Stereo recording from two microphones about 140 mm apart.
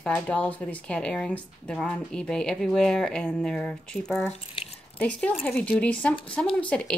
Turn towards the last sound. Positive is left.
turn(degrees=10)  # may be behind; listen again after turning